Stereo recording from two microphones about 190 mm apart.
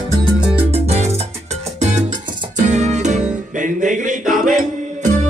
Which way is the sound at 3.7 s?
40° right (ahead or behind).